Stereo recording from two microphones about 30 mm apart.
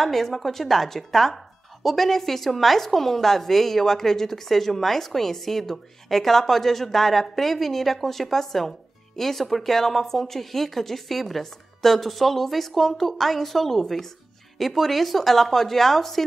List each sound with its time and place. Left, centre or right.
0.0 s speech: centre